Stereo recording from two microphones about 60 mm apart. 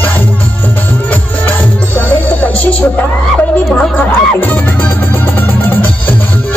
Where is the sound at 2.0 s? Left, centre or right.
Left.